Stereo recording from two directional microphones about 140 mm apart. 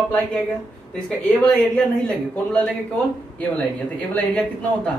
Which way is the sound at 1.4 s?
10° left (ahead or behind).